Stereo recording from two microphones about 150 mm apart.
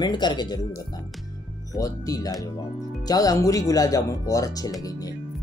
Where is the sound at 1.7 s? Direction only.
20° left (ahead or behind).